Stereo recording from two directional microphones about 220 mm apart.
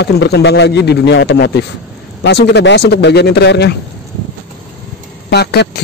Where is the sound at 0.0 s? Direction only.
50° left (ahead or behind).